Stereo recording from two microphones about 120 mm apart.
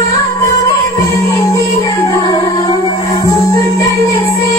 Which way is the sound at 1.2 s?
30° left (ahead or behind).